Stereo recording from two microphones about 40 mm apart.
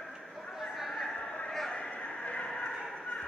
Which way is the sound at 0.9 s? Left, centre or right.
Centre.